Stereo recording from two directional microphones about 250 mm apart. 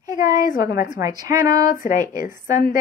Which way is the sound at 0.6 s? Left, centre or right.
Left.